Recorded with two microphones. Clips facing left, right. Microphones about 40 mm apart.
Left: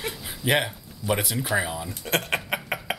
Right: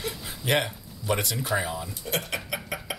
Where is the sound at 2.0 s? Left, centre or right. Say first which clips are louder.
Left 6 dB; left.